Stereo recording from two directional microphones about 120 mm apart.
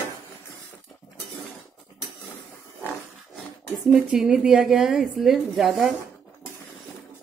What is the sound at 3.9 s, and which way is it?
A woman's voice, 5° right (ahead or behind).